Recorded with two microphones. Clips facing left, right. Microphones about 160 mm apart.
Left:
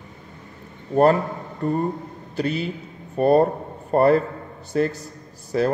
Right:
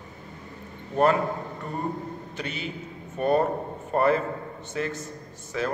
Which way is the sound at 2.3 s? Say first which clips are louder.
Left 12 dB; 35° left (ahead or behind).